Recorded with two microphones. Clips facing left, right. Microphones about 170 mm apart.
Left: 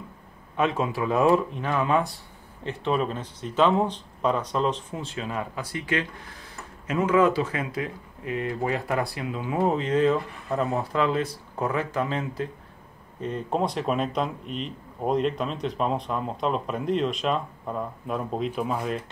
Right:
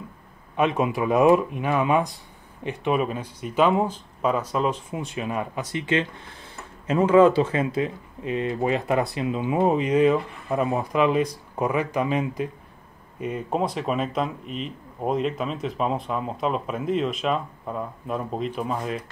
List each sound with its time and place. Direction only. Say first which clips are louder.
0.6 s speech: right 3 dB; 15° right (ahead or behind); by 19.0 s centre (ahead or behind)